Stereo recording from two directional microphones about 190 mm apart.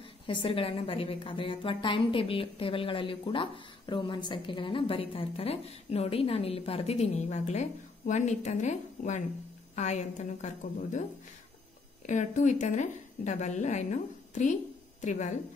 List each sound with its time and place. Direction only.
0.3 s a woman's voice: 25° left (ahead or behind)
12.1 s a woman's voice: 40° left (ahead or behind)